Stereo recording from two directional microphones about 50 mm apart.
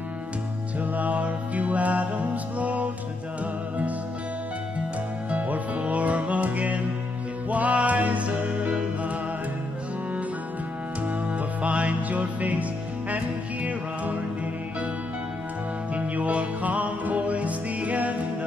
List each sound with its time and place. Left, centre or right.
0.7 s music: right
5.3 s music: right
11.1 s music: right
15.9 s music: right